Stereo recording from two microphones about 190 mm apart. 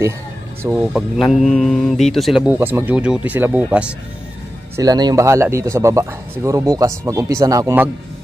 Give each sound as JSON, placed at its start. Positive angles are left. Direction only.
{"t": 0.6, "sound": "speech", "side_deg": -5}
{"t": 4.7, "sound": "speech", "side_deg": -20}